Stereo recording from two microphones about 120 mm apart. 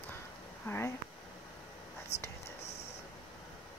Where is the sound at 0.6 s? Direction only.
20° left (ahead or behind).